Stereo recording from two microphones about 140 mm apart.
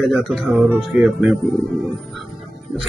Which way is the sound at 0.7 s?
Centre (ahead or behind).